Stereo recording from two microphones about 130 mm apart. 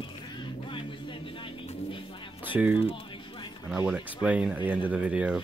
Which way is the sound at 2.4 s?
10° right (ahead or behind).